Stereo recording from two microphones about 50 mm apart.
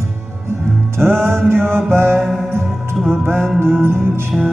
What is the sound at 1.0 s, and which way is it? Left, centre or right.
Music, right.